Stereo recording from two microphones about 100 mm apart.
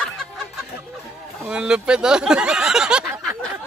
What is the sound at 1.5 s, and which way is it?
Speech, 10° right (ahead or behind).